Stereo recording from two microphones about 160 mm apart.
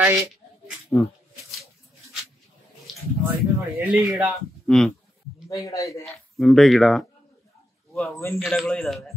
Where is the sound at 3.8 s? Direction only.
10° right (ahead or behind).